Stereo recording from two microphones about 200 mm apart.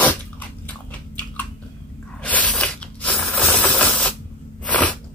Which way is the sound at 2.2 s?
5° left (ahead or behind).